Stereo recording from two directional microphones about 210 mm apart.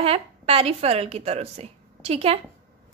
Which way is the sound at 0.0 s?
30° right (ahead or behind).